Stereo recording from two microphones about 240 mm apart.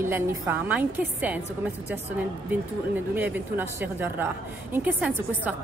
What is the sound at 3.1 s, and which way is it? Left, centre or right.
Speech, centre.